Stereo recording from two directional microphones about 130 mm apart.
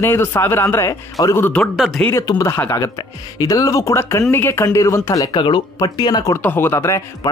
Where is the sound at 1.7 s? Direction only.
5° right (ahead or behind).